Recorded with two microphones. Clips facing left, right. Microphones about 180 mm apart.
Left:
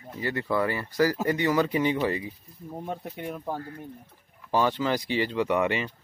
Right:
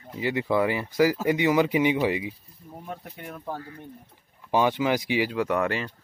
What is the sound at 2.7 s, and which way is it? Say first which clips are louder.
Speech: left 4 dB; 25° left (ahead or behind).